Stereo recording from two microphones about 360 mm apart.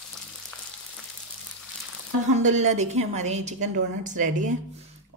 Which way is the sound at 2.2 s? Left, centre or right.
Centre.